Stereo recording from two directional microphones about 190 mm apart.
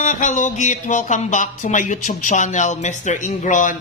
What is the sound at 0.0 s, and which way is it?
Speech, 40° left (ahead or behind).